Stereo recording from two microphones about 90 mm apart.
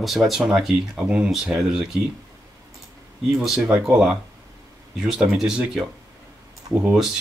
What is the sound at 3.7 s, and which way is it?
Speech, 10° right (ahead or behind).